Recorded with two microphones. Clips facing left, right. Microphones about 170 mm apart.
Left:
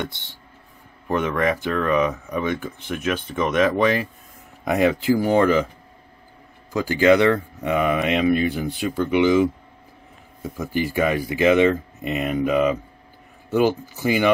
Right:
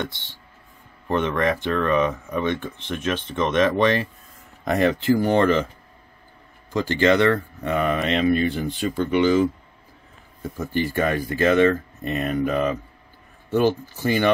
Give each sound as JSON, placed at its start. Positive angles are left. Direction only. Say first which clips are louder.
{"t": 0.0, "sound": "speech", "louder": "even", "side_deg": 15}
{"t": 1.0, "sound": "speech", "louder": "even", "side_deg": 5}
{"t": 6.7, "sound": "speech", "louder": "left 2 dB", "side_deg": 10}